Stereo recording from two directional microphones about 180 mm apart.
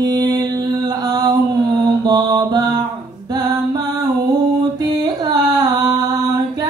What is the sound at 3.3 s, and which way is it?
Music, 20° right (ahead or behind).